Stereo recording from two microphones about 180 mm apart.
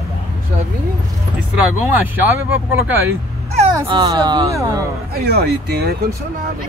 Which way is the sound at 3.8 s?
25° right (ahead or behind).